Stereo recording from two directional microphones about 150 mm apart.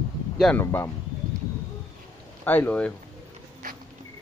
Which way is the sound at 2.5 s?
10° left (ahead or behind).